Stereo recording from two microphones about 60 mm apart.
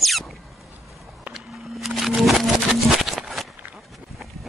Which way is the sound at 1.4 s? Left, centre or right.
Centre.